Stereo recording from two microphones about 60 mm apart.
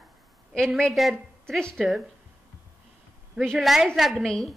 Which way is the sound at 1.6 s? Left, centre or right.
Centre.